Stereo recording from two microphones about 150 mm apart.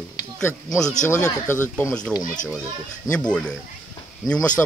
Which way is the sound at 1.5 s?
15° left (ahead or behind).